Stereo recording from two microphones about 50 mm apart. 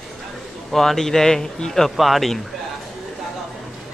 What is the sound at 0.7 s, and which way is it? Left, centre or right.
Speech, centre.